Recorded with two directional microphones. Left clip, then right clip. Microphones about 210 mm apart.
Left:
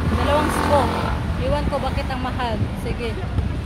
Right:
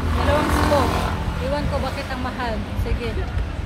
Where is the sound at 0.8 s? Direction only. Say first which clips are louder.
Even; 45° right (ahead or behind).